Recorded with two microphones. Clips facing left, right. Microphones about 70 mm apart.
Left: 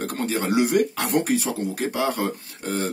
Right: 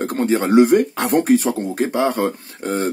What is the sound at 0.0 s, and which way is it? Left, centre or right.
Speech, right.